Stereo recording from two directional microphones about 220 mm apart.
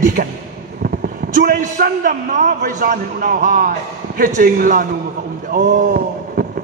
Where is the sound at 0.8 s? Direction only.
40° right (ahead or behind).